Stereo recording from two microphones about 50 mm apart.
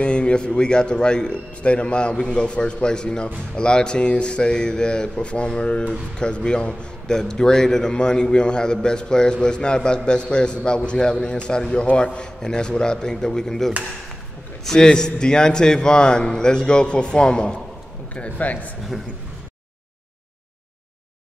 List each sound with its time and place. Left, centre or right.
0.0 s a man's voice: left
18.1 s a man's voice: left